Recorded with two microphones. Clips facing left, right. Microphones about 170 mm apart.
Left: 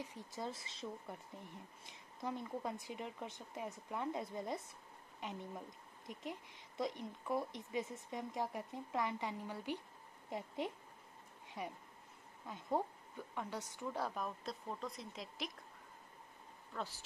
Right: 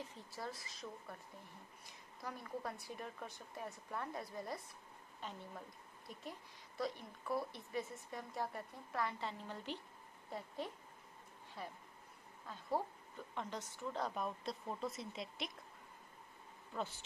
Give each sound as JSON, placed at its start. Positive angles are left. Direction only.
{"t": 0.0, "sound": "a woman's voice", "side_deg": 15}
{"t": 13.3, "sound": "a woman's voice", "side_deg": 10}